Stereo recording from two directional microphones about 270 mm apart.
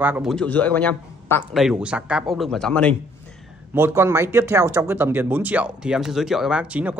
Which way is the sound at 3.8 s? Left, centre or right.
Centre.